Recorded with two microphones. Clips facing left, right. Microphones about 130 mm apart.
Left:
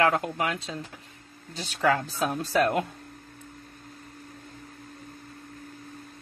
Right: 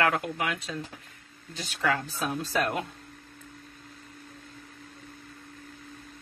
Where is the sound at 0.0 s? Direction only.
35° left (ahead or behind).